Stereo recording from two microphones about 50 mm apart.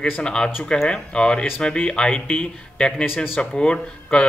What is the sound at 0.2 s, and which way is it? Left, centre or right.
Speech, centre.